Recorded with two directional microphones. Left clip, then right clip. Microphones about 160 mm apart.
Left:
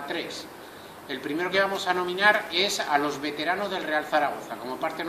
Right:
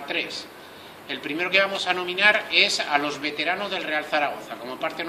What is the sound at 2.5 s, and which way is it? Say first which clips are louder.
Speech: right 6 dB; 45° right (ahead or behind).